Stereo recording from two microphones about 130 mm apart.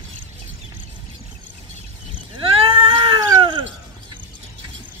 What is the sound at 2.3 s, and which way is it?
Cat, 40° right (ahead or behind).